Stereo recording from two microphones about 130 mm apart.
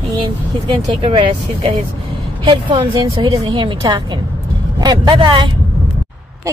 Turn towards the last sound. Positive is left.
turn(degrees=-35)  # may be behind; listen again after turning